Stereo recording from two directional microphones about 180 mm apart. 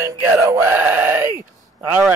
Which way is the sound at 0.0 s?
15° right (ahead or behind).